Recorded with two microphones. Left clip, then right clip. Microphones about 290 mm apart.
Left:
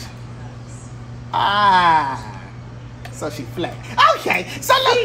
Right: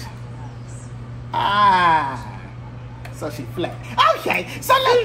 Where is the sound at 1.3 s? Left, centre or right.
Centre.